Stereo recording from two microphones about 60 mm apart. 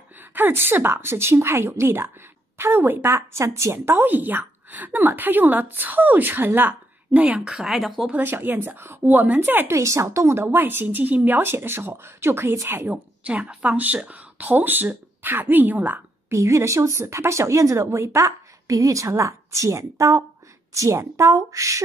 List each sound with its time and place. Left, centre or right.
0.2 s a woman's voice: right
3.1 s a woman's voice: right
7.4 s speech: centre
8.1 s a woman's voice: right
9.7 s a woman's voice: right
11.4 s a woman's voice: right
12.9 s speech: right
16.3 s speech: right